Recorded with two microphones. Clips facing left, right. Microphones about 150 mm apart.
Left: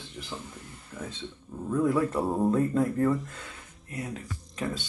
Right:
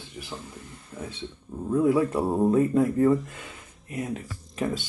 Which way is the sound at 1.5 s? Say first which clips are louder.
Right 4 dB; 15° right (ahead or behind).